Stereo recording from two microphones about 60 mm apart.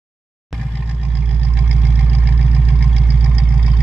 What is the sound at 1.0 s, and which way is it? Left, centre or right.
Vehicle, right.